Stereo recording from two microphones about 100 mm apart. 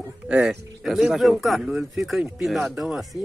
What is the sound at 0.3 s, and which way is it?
Speech, 10° right (ahead or behind).